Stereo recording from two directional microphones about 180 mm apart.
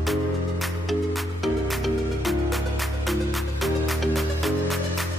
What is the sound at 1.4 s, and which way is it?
Music, centre (ahead or behind).